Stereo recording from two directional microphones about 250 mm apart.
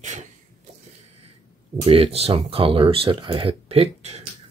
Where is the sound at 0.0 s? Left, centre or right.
Right.